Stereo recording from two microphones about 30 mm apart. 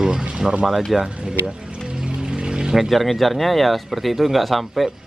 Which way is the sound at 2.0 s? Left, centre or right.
Right.